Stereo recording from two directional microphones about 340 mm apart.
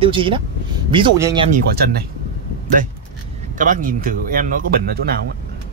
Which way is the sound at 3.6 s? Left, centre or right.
Right.